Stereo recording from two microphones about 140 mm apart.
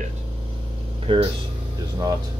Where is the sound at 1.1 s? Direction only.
35° right (ahead or behind).